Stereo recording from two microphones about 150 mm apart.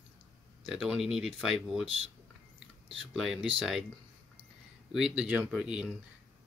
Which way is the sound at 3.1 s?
Centre (ahead or behind).